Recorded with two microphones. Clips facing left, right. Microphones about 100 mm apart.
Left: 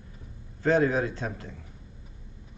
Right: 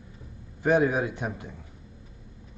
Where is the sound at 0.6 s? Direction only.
15° right (ahead or behind).